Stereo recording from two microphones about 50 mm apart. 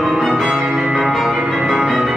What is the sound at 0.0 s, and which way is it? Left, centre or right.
Music, centre.